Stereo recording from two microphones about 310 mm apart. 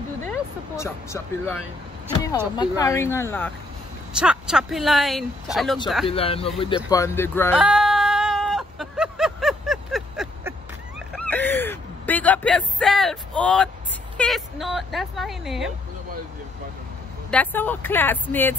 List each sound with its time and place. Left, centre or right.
0.3 s speech: centre
6.0 s speech: centre
7.5 s a sound: centre
14.1 s speech: centre
17.3 s speech: centre